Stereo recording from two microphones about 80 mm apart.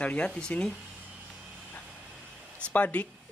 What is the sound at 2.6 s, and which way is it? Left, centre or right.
Speech, centre.